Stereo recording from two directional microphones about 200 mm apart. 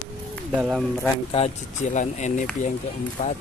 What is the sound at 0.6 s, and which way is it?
Speech, centre (ahead or behind).